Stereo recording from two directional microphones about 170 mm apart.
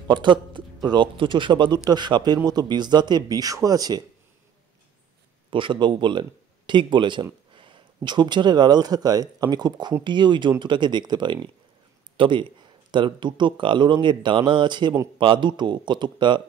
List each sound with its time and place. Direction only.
0.1 s a man's voice: 25° right (ahead or behind)
5.5 s speech: 30° right (ahead or behind)